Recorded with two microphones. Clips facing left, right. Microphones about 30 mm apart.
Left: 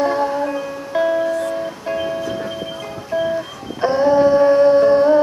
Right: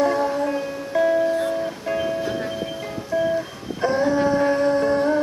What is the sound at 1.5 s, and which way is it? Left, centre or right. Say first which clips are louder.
Music: left 1 dB; centre.